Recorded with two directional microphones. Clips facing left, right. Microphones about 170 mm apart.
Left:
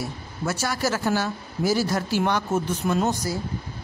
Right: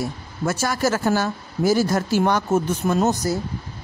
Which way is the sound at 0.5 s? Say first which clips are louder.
Right 4 dB; 50° right (ahead or behind).